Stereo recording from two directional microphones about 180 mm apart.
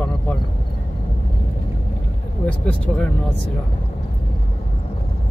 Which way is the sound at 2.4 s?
5° left (ahead or behind).